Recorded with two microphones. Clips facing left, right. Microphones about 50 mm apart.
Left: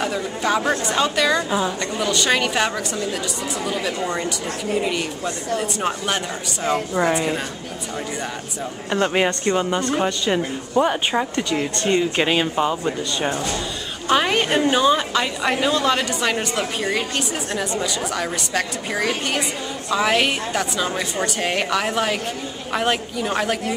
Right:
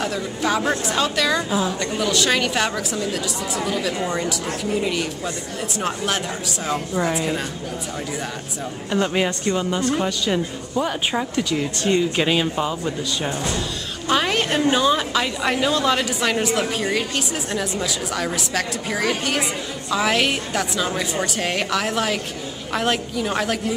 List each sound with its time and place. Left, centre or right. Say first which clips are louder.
0.0 s a woman's voice: left 1 dB; centre
8.9 s speech: left 2 dB; centre
10.8 s speech: left 5 dB; left
11.9 s a woman's voice: even; centre